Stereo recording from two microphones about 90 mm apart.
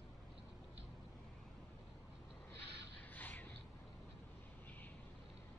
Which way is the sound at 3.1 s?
20° left (ahead or behind).